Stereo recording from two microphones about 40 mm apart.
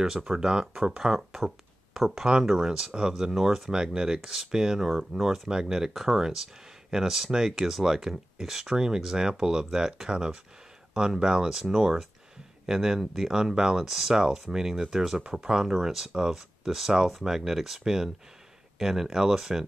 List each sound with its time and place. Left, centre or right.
0.0 s speech: centre
3.7 s speech: centre